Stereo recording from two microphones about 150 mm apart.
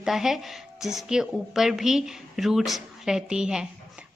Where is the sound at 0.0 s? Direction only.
5° right (ahead or behind).